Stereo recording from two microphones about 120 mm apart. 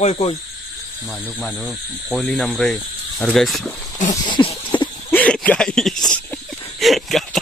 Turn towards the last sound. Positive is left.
turn(degrees=0)  # may be behind; listen again after turning